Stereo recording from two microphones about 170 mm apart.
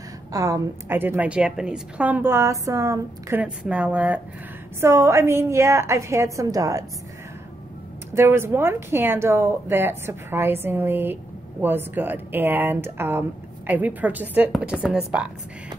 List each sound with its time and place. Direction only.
0.3 s a woman's voice: 20° right (ahead or behind)
8.1 s a woman's voice: 15° right (ahead or behind)